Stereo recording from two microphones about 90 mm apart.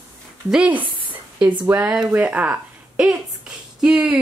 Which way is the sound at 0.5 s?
15° right (ahead or behind).